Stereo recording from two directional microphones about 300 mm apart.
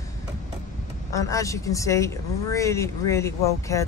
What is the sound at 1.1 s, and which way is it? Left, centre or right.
Speech, centre.